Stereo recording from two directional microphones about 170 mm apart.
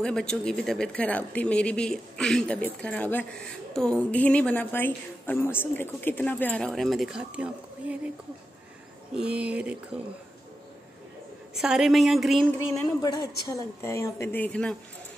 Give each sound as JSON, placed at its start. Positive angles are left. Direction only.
{"t": 0.0, "sound": "speech", "side_deg": 5}
{"t": 9.1, "sound": "speech", "side_deg": -5}
{"t": 11.5, "sound": "speech", "side_deg": -5}
{"t": 13.0, "sound": "speech", "side_deg": 20}